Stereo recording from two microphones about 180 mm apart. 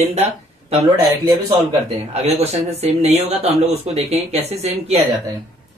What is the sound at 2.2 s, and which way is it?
Speech, 35° right (ahead or behind).